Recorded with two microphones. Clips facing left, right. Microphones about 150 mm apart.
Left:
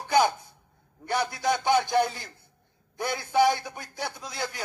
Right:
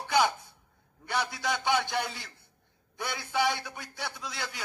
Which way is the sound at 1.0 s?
45° left (ahead or behind).